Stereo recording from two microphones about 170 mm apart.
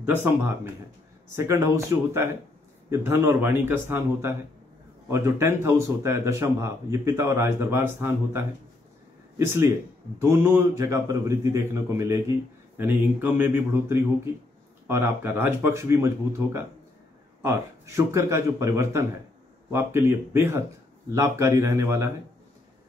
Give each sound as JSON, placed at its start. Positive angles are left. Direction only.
{"t": 0.0, "sound": "a man's voice", "side_deg": -10}
{"t": 9.5, "sound": "a man's voice", "side_deg": -15}
{"t": 17.4, "sound": "a man's voice", "side_deg": -15}